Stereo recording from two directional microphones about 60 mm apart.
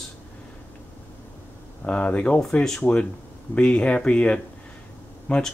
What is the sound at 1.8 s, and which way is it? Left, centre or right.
Speech, left.